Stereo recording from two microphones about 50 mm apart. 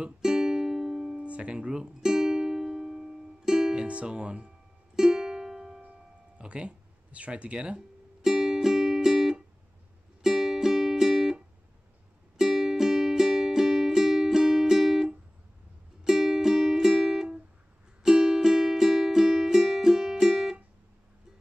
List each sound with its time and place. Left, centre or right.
0.2 s music: centre
1.1 s music: right
3.7 s speech: right
4.9 s music: centre
6.3 s speech: right
8.2 s music: centre
12.4 s music: centre